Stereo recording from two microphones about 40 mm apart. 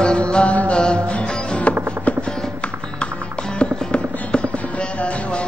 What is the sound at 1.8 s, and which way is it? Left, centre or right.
Music, right.